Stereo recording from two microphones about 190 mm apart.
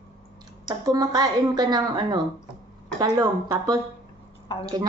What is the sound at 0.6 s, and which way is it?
Speech, 20° right (ahead or behind).